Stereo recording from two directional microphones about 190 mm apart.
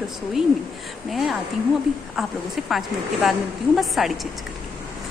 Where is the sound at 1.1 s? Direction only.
Centre (ahead or behind).